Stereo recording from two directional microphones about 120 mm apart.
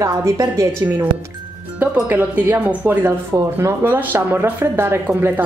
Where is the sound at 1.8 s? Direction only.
10° right (ahead or behind).